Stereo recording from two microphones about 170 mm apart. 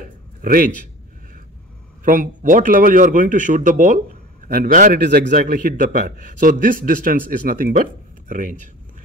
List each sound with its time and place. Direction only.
0.4 s a man's voice: 55° right (ahead or behind)
2.0 s a man's voice: 50° right (ahead or behind)
5.0 s a man's voice: 90° right
5.3 s a man's voice: 55° right (ahead or behind)